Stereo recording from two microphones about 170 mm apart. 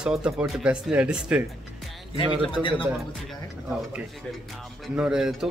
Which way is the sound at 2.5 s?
30° left (ahead or behind).